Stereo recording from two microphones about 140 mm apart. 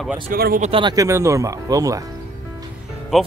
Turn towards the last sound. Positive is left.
turn(degrees=0)  # may be behind; listen again after turning